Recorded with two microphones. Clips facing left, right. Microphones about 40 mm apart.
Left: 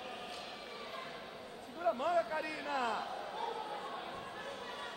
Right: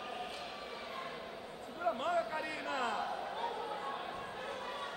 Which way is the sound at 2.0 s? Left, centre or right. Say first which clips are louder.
Left 1 dB; right.